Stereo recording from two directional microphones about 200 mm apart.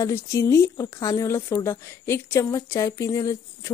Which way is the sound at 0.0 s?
15° left (ahead or behind).